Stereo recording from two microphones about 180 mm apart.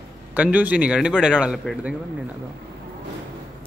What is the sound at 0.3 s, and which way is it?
A man's voice, 10° right (ahead or behind).